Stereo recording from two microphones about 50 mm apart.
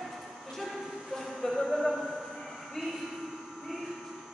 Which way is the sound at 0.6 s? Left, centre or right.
Centre.